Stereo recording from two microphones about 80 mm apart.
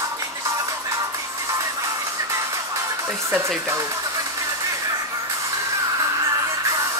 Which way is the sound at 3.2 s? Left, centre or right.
Right.